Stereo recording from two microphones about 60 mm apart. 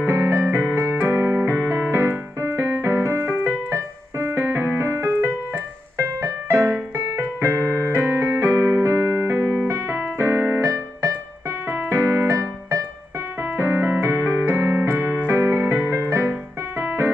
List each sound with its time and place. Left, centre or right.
0.0 s music: right
0.9 s keyboard: right
1.9 s music: right
2.4 s music: right
6.5 s music: right
7.9 s electric piano: right
9.3 s keyboard: right
11.7 s keyboard: right
13.6 s music: right
13.8 s music: right
14.5 s keyboard: right